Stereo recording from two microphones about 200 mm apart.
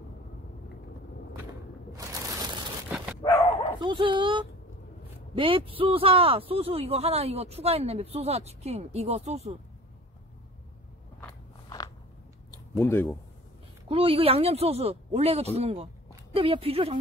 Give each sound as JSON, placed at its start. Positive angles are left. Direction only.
{"t": 1.9, "sound": "a sound", "side_deg": -20}
{"t": 3.8, "sound": "speech", "side_deg": -25}
{"t": 12.7, "sound": "speech", "side_deg": 10}
{"t": 13.8, "sound": "speech", "side_deg": -25}